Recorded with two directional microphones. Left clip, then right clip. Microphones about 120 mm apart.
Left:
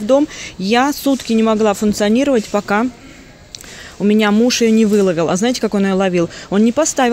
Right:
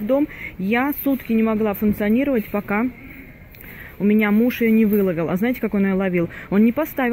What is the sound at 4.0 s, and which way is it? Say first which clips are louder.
Speech: left 5 dB; 40° left (ahead or behind).